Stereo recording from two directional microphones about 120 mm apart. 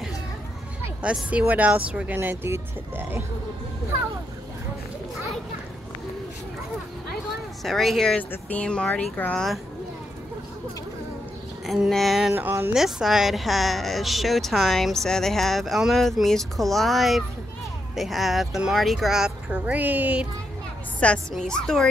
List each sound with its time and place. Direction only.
1.0 s speech: 10° right (ahead or behind)
7.6 s a woman's voice: centre (ahead or behind)
11.6 s a woman's voice: centre (ahead or behind)
12.4 s speech: 20° right (ahead or behind)
12.7 s a woman's voice: 5° right (ahead or behind)
21.0 s a woman's voice: 10° left (ahead or behind)